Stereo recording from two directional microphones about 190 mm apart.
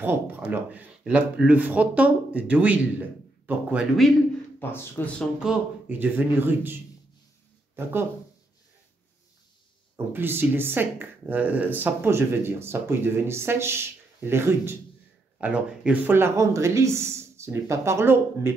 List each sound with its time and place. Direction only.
0.0 s speech: 10° right (ahead or behind)
4.6 s speech: 10° left (ahead or behind)
5.4 s speech: 5° right (ahead or behind)
9.9 s speech: 10° right (ahead or behind)